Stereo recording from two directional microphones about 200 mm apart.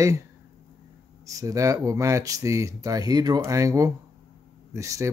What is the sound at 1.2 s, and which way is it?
Speech, 15° right (ahead or behind).